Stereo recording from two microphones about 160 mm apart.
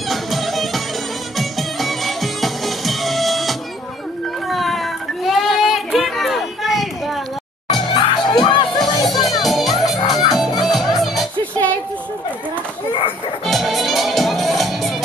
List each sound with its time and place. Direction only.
0.1 s music: centre (ahead or behind)
4.5 s a sound: centre (ahead or behind)
7.9 s music: 30° left (ahead or behind)
9.4 s music: centre (ahead or behind)
9.8 s music: 25° left (ahead or behind)
10.6 s music: centre (ahead or behind)
13.5 s music: centre (ahead or behind)